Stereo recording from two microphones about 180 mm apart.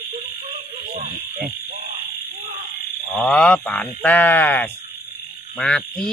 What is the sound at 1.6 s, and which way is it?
Speech, 60° right (ahead or behind).